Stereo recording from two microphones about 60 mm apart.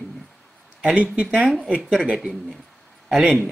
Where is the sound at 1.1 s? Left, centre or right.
Centre.